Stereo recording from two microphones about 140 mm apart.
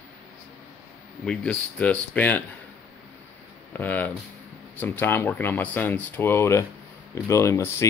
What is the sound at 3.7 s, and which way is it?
Speech, 10° left (ahead or behind).